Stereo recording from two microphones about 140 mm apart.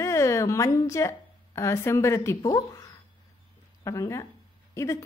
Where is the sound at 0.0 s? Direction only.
20° left (ahead or behind).